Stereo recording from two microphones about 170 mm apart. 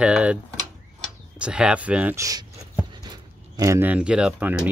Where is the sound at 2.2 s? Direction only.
20° right (ahead or behind).